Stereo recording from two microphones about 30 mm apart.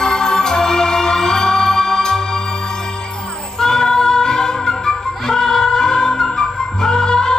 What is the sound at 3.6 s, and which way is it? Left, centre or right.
Music, left.